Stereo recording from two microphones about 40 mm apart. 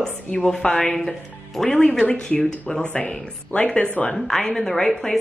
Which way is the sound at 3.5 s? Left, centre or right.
Left.